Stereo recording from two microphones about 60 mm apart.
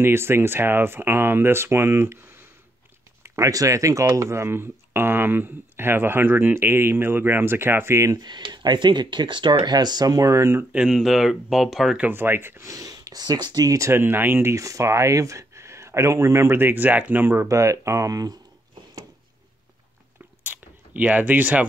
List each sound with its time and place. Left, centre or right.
0.0 s speech: right
3.3 s a sound: right
3.5 s speech: right
9.6 s speech: right
10.7 s speech: centre
12.1 s speech: right
12.6 s speech: right
13.9 s speech: right
14.5 s speech: right
16.5 s speech: right
17.5 s speech: right
20.4 s a sound: right